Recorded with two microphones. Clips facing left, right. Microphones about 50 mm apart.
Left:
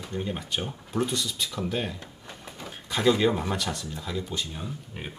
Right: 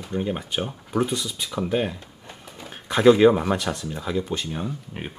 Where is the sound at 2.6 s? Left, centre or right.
Right.